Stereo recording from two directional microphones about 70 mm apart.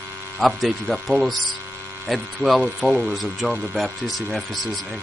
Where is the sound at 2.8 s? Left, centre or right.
Left.